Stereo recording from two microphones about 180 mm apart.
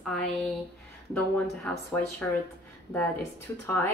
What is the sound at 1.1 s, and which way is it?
A woman's voice, 10° left (ahead or behind).